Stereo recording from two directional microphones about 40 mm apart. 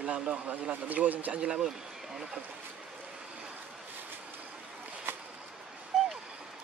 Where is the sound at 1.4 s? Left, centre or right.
Right.